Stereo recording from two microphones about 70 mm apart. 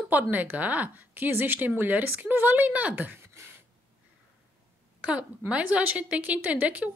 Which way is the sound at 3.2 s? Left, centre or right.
Right.